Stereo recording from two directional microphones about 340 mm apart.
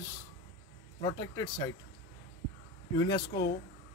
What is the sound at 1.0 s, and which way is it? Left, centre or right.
Speech, centre.